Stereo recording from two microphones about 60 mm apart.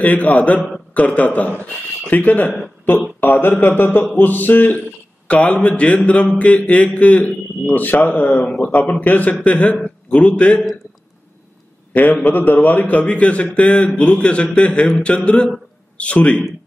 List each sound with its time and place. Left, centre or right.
0.0 s a man's voice: left
12.1 s a man's voice: left